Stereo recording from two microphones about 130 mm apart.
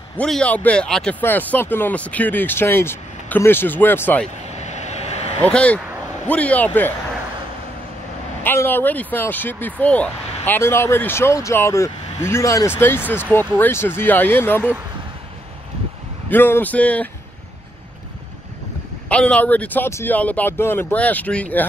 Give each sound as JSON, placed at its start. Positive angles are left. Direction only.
{"t": 0.2, "sound": "speech", "side_deg": 10}
{"t": 1.2, "sound": "speech", "side_deg": 15}
{"t": 4.6, "sound": "vehicle", "side_deg": 60}
{"t": 5.4, "sound": "speech", "side_deg": 10}
{"t": 8.5, "sound": "speech", "side_deg": 15}
{"t": 16.3, "sound": "speech", "side_deg": 15}
{"t": 19.0, "sound": "speech", "side_deg": 10}